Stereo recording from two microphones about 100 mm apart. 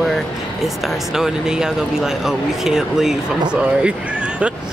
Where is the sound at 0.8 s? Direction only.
5° right (ahead or behind).